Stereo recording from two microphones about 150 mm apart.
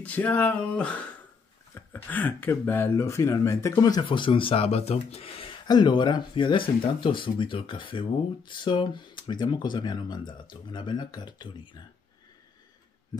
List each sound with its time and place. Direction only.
0.0 s speech: 10° left (ahead or behind)
4.0 s speech: 35° left (ahead or behind)